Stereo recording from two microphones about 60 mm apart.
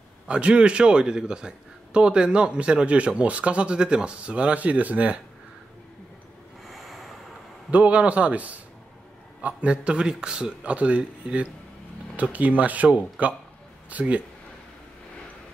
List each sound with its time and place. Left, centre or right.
0.3 s a man's voice: centre
6.7 s wind noise: centre
7.7 s a man's voice: right